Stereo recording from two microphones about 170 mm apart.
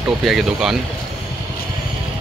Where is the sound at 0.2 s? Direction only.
Centre (ahead or behind).